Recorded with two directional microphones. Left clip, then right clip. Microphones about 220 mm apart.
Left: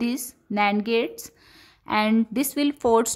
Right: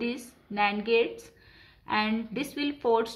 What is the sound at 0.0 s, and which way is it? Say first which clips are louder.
A woman's voice: left 4 dB; 45° left (ahead or behind).